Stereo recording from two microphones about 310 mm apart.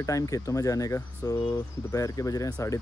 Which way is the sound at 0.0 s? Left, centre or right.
Centre.